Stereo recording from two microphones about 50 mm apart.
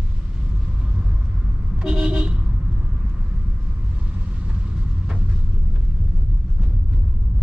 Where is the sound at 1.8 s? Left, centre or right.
Right.